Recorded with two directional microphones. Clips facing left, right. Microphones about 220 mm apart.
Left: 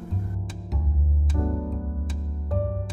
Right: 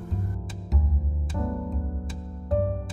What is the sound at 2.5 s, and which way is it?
Music, centre (ahead or behind).